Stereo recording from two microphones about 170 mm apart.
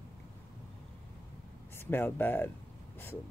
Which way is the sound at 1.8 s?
10° left (ahead or behind).